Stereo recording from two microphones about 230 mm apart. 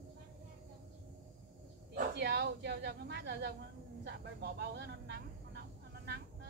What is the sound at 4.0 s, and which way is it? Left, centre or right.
Vehicle, right.